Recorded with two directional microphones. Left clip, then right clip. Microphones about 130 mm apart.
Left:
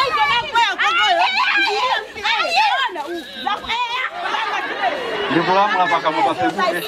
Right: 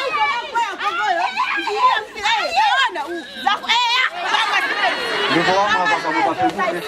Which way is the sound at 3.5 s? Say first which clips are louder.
Right 5 dB; 35° right (ahead or behind).